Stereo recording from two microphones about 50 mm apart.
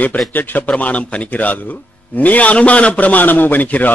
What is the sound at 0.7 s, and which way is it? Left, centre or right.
A man's voice, left.